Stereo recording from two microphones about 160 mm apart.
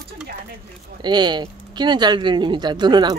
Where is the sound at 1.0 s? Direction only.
25° right (ahead or behind).